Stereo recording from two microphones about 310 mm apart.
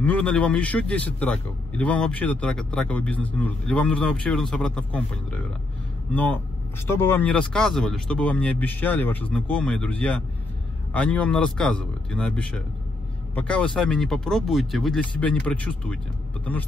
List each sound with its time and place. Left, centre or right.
0.0 s a man's voice: centre